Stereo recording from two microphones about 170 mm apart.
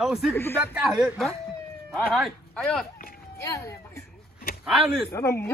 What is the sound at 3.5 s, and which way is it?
Speech, 20° left (ahead or behind).